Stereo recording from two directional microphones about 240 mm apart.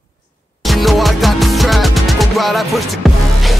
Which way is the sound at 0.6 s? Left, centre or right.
Centre.